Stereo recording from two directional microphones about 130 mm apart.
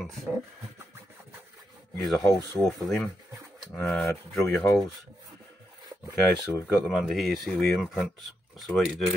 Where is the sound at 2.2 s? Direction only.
25° left (ahead or behind).